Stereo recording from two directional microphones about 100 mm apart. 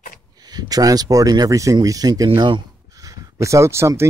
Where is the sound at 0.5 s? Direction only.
40° right (ahead or behind).